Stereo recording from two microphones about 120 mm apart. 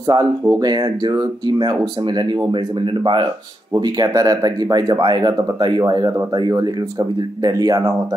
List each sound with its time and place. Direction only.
0.0 s speech: 30° right (ahead or behind)
3.8 s speech: 30° right (ahead or behind)